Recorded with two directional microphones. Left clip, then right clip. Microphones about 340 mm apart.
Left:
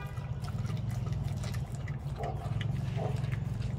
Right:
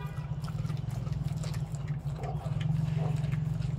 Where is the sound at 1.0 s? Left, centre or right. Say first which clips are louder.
Right 1 dB; centre.